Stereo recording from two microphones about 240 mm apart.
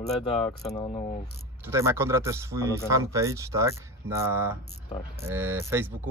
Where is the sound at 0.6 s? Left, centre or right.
Centre.